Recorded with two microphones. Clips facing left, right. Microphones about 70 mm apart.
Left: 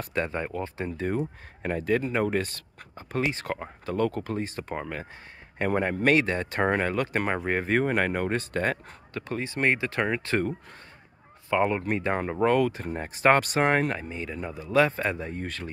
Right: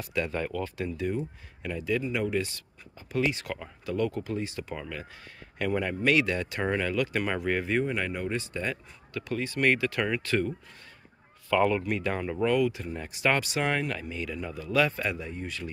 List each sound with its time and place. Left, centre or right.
0.0 s speech: left
9.3 s speech: left
11.5 s speech: left